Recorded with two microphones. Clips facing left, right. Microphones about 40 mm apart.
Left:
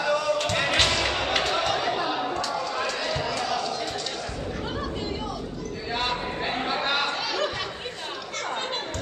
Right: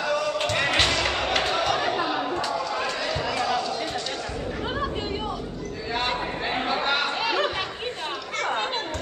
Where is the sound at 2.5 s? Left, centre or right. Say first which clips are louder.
Right 1 dB; centre.